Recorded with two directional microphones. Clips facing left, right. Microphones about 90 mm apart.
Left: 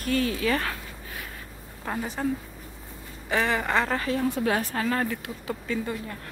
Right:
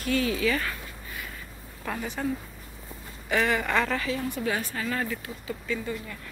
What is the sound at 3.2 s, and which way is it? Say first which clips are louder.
Speech: even; 30° left (ahead or behind).